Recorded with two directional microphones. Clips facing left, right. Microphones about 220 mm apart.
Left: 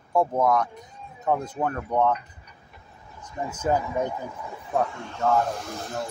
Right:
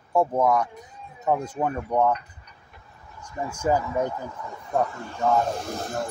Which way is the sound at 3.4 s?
10° right (ahead or behind).